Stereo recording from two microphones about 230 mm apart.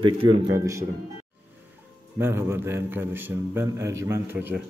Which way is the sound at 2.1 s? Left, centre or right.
Centre.